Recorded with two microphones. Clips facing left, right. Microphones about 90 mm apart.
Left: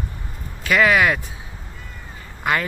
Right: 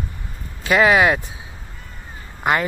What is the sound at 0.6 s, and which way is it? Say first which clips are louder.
Speech: right 2 dB; 25° right (ahead or behind).